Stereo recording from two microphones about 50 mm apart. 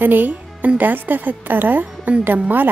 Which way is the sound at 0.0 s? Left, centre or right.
Right.